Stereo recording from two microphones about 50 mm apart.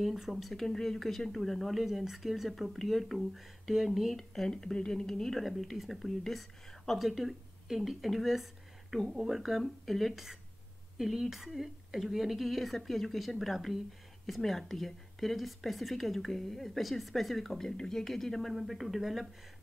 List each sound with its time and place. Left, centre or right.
0.0 s speech: centre